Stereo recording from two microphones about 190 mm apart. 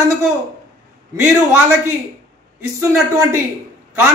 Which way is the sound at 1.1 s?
15° right (ahead or behind).